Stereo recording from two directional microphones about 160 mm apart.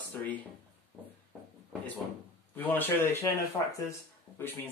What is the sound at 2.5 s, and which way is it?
Speech, 10° left (ahead or behind).